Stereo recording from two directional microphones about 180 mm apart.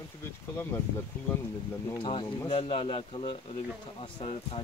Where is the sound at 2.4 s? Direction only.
30° left (ahead or behind).